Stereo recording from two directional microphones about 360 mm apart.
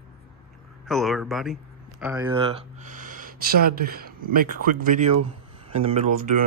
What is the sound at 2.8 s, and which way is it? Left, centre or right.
Speech, right.